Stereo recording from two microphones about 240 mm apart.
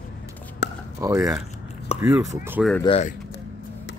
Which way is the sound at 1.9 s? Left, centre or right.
Left.